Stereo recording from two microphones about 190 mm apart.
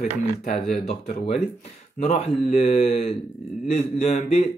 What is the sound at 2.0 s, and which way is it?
Speech, 35° left (ahead or behind).